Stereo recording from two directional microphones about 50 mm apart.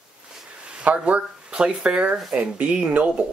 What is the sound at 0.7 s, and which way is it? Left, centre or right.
Speech, right.